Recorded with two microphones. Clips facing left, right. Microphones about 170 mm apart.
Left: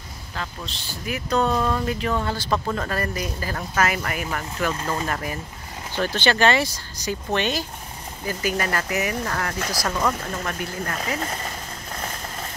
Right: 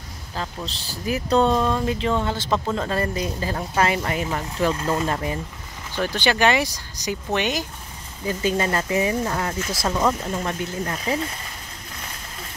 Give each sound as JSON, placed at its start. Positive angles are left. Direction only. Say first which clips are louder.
{"t": 0.4, "sound": "speech", "louder": "right 3 dB", "side_deg": -35}
{"t": 5.9, "sound": "speech", "louder": "even", "side_deg": -15}
{"t": 8.3, "sound": "speech", "louder": "right 3 dB", "side_deg": -25}
{"t": 11.1, "sound": "a sound", "louder": "even", "side_deg": 50}